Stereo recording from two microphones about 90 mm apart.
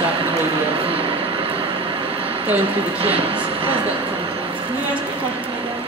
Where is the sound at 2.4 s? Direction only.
20° right (ahead or behind).